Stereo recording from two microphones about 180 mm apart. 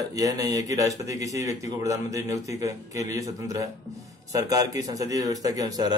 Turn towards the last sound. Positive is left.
turn(degrees=-20)  # may be behind; listen again after turning